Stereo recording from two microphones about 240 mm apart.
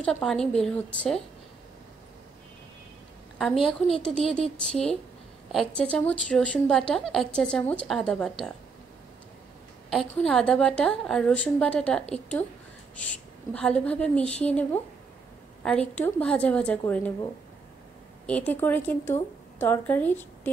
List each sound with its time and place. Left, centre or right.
0.0 s a woman's voice: centre
3.6 s a woman's voice: centre
9.8 s a woman's voice: centre